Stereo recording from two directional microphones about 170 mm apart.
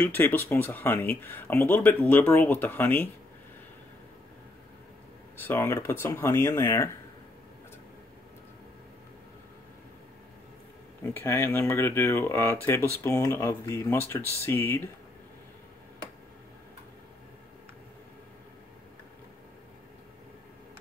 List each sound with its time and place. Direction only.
0.0 s speech: 10° left (ahead or behind)
5.4 s speech: 15° left (ahead or behind)
11.1 s speech: 10° left (ahead or behind)